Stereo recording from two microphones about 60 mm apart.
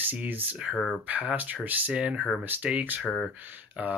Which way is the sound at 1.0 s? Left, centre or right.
Right.